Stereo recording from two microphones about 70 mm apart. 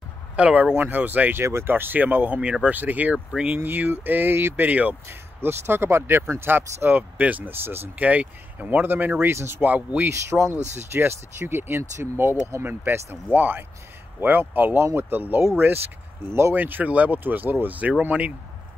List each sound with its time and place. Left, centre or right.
0.4 s speech: centre
1.4 s speech: right
4.6 s speech: right
5.0 s speech: right
10.3 s speech: centre
10.9 s speech: right; by 18.3 s centre